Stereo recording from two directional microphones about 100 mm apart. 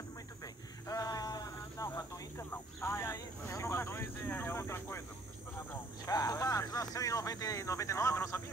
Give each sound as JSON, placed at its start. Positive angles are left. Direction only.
{"t": 0.8, "sound": "a sound", "side_deg": 40}
{"t": 2.5, "sound": "speech", "side_deg": 25}
{"t": 6.0, "sound": "speech", "side_deg": 35}